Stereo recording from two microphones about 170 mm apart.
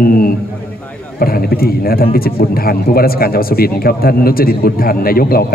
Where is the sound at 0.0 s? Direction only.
60° left (ahead or behind).